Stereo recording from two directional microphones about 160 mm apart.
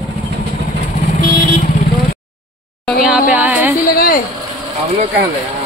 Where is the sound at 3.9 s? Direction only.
65° left (ahead or behind).